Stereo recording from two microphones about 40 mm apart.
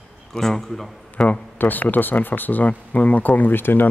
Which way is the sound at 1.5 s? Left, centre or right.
Left.